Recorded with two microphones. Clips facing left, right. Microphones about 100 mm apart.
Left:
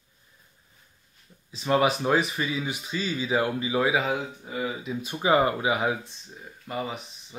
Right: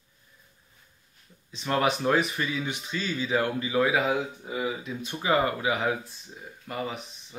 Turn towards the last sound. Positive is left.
turn(degrees=5)  # may be behind; listen again after turning